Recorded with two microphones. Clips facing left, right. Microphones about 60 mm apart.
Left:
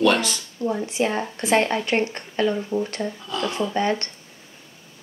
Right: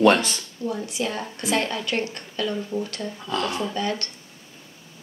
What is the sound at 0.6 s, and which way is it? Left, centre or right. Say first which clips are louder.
Speech: left 5 dB; left.